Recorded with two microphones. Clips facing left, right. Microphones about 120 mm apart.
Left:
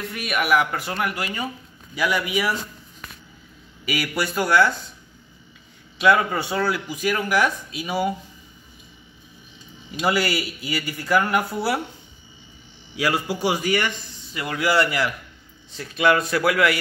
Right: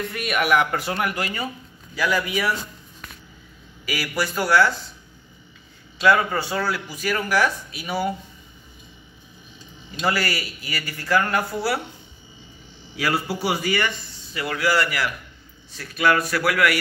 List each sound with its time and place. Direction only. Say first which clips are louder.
0.0 s speech: right 2 dB; centre (ahead or behind)
2.0 s a man's voice: even; 15° left (ahead or behind)
3.8 s a man's voice: left 1 dB; 20° left (ahead or behind)
5.9 s a man's voice: even; 20° left (ahead or behind)
9.8 s a man's voice: left 2 dB; 15° left (ahead or behind)
12.9 s a man's voice: left 1 dB; 15° left (ahead or behind)